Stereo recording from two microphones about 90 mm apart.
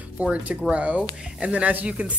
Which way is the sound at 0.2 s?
15° right (ahead or behind).